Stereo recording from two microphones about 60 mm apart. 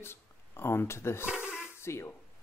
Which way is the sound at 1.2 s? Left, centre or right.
Right.